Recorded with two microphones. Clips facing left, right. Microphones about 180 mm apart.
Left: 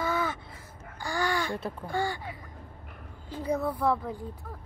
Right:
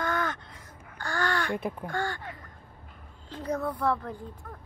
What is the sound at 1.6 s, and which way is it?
Speech, 15° right (ahead or behind).